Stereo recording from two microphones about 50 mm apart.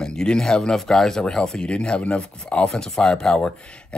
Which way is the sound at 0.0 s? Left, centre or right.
Centre.